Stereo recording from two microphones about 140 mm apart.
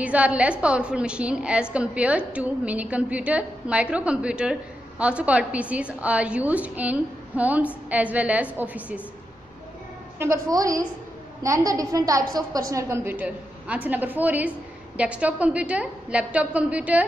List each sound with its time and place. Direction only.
0.0 s a woman's voice: 10° right (ahead or behind)
10.1 s a woman's voice: 20° right (ahead or behind)